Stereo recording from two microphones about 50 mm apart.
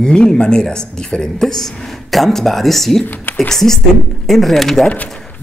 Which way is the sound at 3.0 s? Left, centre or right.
Left.